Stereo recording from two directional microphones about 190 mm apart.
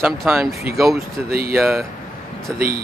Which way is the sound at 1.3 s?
50° right (ahead or behind).